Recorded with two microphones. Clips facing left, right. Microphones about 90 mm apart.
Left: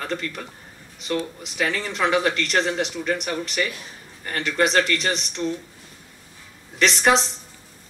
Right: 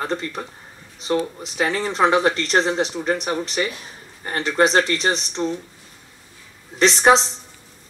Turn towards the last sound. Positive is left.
turn(degrees=-30)  # may be behind; listen again after turning